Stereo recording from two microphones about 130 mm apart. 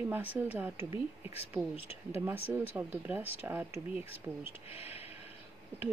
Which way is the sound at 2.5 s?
15° right (ahead or behind).